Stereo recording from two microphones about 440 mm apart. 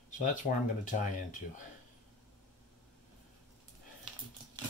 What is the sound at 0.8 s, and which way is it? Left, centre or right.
Speech, centre.